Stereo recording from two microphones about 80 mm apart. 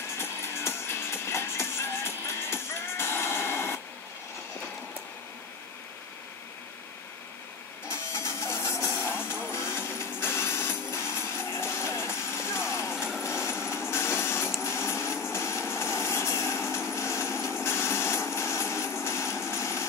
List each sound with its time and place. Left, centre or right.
0.2 s music: left
7.9 s music: left
12.9 s vehicle: centre
13.7 s printer: left
15.3 s vehicle: left
16.9 s a sound: left
17.6 s vehicle: left